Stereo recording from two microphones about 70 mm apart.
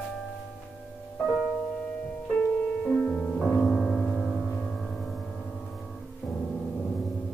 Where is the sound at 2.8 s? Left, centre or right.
Centre.